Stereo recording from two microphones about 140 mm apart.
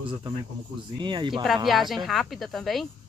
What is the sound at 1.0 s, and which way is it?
Speech, 35° right (ahead or behind).